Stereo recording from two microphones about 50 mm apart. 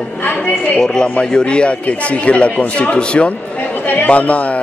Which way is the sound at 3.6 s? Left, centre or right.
Left.